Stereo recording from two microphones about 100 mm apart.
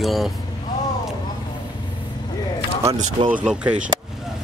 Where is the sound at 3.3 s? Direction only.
10° right (ahead or behind).